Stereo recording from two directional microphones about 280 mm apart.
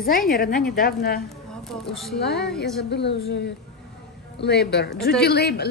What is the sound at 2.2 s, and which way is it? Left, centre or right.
A woman's voice, left.